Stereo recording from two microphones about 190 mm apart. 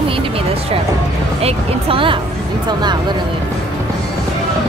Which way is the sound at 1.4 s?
30° right (ahead or behind).